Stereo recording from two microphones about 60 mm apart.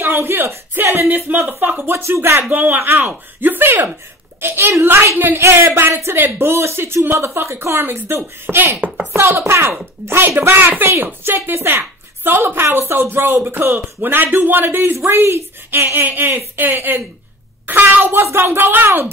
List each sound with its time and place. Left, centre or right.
0.0 s speech: right
0.9 s a woman's voice: right
1.9 s speech: right
2.5 s a woman's voice: right
5.4 s a woman's voice: right